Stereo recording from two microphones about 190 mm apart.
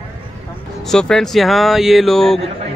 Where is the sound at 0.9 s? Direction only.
5° left (ahead or behind).